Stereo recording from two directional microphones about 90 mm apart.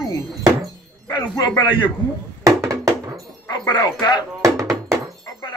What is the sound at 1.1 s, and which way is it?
Speech, 45° left (ahead or behind).